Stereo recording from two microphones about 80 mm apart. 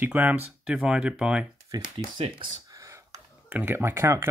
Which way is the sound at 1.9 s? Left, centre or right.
Right.